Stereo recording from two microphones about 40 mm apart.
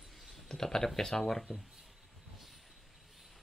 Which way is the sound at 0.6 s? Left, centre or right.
Centre.